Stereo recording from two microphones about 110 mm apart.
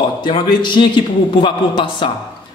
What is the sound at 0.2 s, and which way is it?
A man's voice, 45° left (ahead or behind).